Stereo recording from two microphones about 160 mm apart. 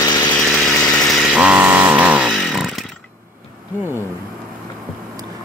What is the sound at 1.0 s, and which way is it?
Chainsaw, centre (ahead or behind).